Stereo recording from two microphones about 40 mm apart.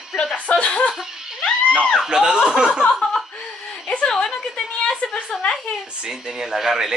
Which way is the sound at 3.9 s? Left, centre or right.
Left.